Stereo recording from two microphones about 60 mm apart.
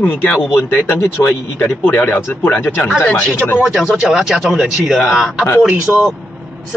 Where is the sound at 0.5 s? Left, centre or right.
Left.